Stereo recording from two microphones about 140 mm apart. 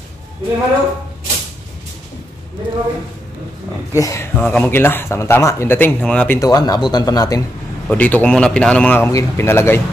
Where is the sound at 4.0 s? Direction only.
20° left (ahead or behind).